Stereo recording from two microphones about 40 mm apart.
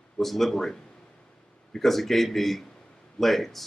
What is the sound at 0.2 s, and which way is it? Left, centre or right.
Speech, centre.